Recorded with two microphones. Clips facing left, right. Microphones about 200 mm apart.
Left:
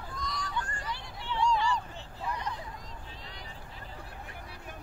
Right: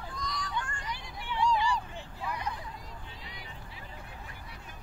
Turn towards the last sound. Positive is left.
turn(degrees=-10)  # may be behind; listen again after turning